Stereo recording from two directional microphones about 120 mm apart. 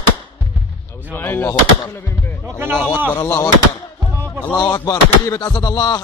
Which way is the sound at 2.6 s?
15° right (ahead or behind).